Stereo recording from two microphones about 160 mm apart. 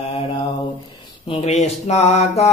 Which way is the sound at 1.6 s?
45° left (ahead or behind).